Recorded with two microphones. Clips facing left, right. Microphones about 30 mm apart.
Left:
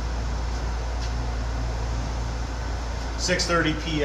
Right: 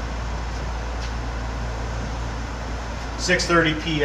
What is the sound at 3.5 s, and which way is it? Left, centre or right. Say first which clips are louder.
Speech: right 5 dB; right.